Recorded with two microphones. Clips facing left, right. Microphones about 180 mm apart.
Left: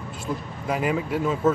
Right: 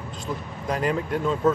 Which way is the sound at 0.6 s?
5° left (ahead or behind).